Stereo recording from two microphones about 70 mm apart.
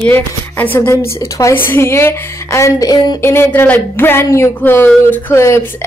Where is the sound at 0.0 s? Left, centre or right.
Left.